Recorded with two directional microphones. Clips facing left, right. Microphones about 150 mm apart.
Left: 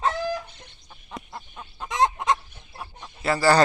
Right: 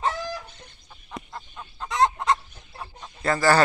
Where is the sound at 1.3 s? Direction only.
15° left (ahead or behind).